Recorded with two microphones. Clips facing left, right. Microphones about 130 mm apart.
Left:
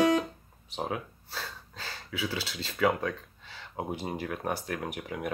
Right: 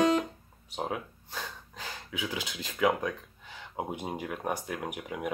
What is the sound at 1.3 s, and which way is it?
Speech, 15° right (ahead or behind).